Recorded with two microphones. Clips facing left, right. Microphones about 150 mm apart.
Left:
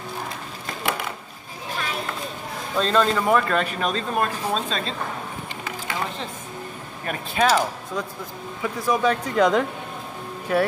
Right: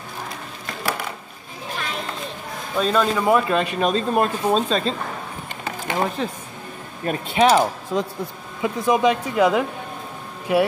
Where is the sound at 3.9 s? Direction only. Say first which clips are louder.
Right 4 dB; 25° right (ahead or behind).